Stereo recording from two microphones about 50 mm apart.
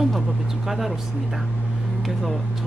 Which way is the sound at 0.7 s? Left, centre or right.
Centre.